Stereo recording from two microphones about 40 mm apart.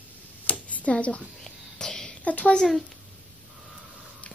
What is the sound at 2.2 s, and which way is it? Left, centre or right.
Speech, left.